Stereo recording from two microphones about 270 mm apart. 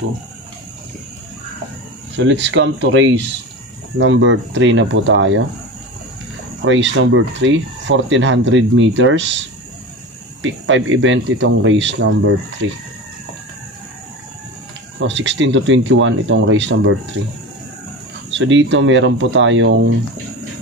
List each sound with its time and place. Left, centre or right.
2.1 s speech: right
6.6 s speech: right
10.4 s speech: right
15.0 s speech: right
18.4 s speech: right